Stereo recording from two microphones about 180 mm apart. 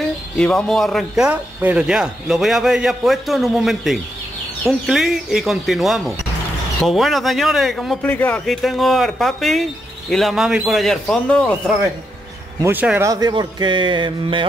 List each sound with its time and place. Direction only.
0.4 s speech: 5° left (ahead or behind)
12.6 s speech: 10° right (ahead or behind); by 14.4 s 25° right (ahead or behind)